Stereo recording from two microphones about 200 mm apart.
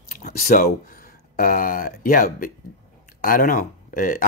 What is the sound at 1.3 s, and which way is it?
Speech, 45° left (ahead or behind).